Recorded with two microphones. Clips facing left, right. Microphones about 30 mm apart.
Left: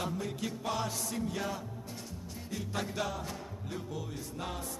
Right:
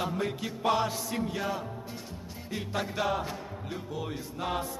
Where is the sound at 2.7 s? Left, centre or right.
Centre.